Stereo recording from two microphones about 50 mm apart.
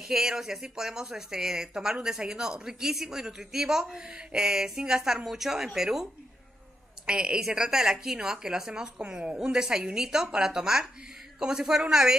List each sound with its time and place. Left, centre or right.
0.0 s speech: centre
7.1 s speech: centre